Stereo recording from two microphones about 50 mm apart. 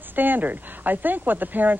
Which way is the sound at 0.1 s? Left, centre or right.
Right.